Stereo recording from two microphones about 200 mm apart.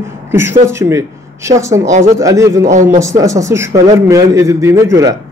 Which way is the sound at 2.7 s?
40° right (ahead or behind).